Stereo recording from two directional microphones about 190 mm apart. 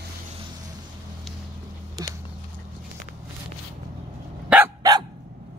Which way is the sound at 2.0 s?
20° right (ahead or behind).